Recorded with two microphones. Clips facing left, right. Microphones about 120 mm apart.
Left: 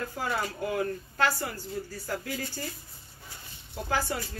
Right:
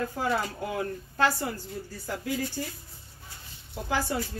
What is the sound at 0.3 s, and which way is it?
Speech, 20° right (ahead or behind).